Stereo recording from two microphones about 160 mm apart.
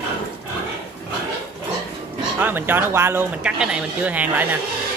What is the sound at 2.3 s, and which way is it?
Speech, 10° right (ahead or behind).